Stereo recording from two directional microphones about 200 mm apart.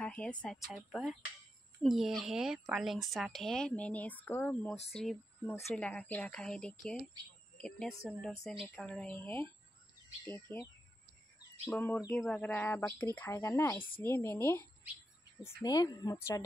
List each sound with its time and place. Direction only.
0.0 s a woman's voice: 5° left (ahead or behind)
8.0 s a woman's voice: centre (ahead or behind)
15.6 s speech: 20° left (ahead or behind)